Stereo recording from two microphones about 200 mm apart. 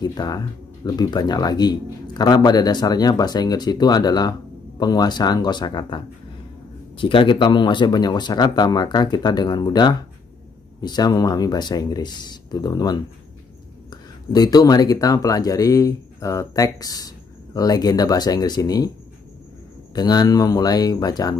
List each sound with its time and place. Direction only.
0.0 s a man's voice: 20° left (ahead or behind)
14.3 s a man's voice: 20° left (ahead or behind)
19.9 s a man's voice: 20° left (ahead or behind)